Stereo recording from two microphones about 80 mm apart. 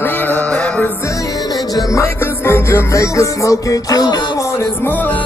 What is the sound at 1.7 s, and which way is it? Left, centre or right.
Music, left.